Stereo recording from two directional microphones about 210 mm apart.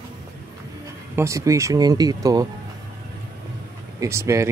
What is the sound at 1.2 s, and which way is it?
Speech, 15° right (ahead or behind).